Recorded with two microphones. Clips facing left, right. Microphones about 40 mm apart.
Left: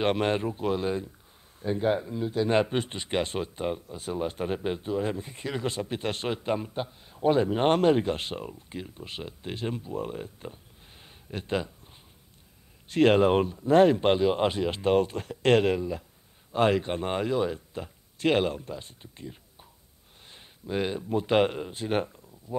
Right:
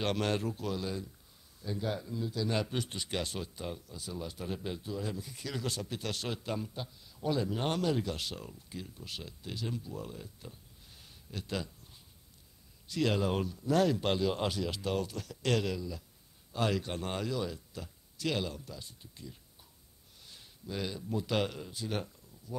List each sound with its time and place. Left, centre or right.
0.0 s speech: left